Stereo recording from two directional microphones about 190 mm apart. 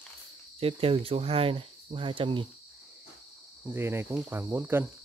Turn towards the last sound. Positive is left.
turn(degrees=-10)  # may be behind; listen again after turning